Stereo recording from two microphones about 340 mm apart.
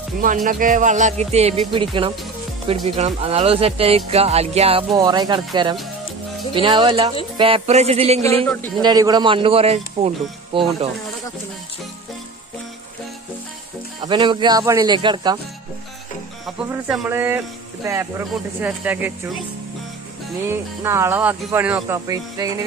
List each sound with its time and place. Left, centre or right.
0.2 s speech: right
14.0 s speech: centre
16.4 s speech: centre
20.4 s speech: centre